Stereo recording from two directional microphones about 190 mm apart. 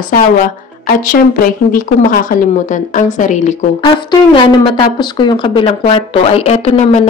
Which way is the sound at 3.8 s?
25° left (ahead or behind).